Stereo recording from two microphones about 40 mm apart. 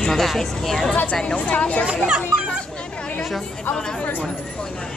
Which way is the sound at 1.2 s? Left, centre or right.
Left.